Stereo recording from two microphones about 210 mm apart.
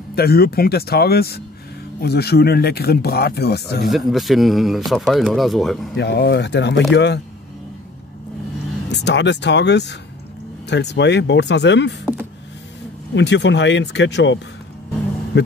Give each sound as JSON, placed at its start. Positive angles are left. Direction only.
{"t": 0.1, "sound": "speech", "side_deg": 45}
{"t": 3.9, "sound": "speech", "side_deg": 0}
{"t": 5.9, "sound": "speech", "side_deg": 50}
{"t": 8.9, "sound": "speech", "side_deg": 55}
{"t": 13.1, "sound": "speech", "side_deg": 55}
{"t": 15.3, "sound": "vehicle", "side_deg": 55}